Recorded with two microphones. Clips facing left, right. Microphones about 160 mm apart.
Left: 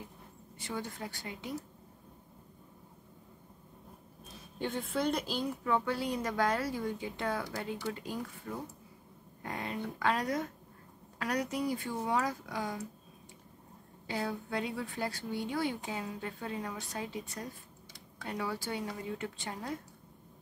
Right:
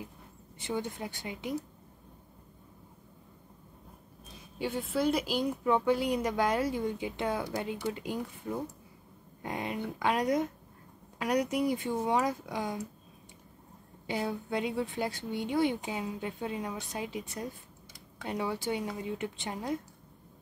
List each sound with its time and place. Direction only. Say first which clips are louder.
0.6 s speech: right 5 dB; 20° right (ahead or behind)
4.6 s speech: right 3 dB; 5° right (ahead or behind); by 12.8 s 20° right (ahead or behind)
14.0 s speech: right 3 dB; 20° right (ahead or behind)